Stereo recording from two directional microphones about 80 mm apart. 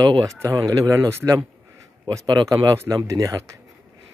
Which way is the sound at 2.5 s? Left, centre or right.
Right.